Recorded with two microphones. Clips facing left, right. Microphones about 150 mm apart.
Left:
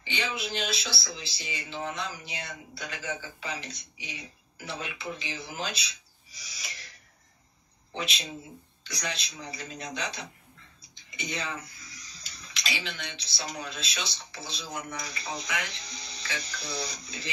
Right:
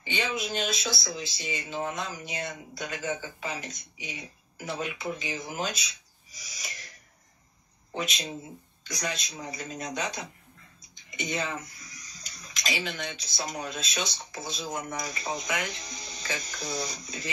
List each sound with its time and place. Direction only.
0.0 s speech: 45° right (ahead or behind)
6.3 s owl: 45° right (ahead or behind)
7.9 s speech: 45° right (ahead or behind)